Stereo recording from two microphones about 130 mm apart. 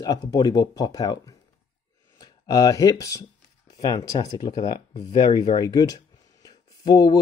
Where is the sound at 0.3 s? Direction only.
30° left (ahead or behind).